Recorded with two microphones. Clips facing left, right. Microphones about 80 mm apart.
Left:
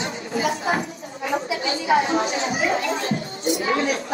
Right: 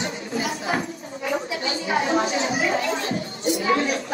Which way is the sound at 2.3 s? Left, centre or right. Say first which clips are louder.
Even; left.